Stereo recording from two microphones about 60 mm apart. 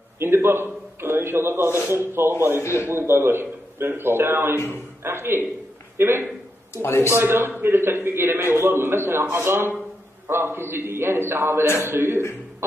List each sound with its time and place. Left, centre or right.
0.2 s a man's voice: right
2.6 s speech: left
2.9 s a man's voice: right
6.7 s speech: left
7.2 s a man's voice: right